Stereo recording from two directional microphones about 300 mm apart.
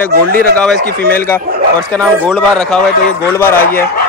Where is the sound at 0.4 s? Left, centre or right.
Centre.